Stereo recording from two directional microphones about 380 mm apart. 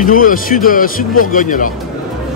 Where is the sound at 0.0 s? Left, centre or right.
Left.